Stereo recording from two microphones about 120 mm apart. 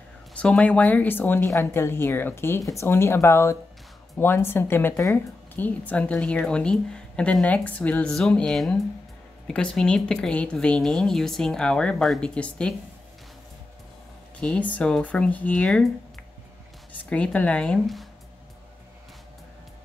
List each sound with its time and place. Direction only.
0.4 s a woman's voice: 10° left (ahead or behind)
14.4 s a woman's voice: 10° left (ahead or behind)
17.1 s a woman's voice: 10° left (ahead or behind)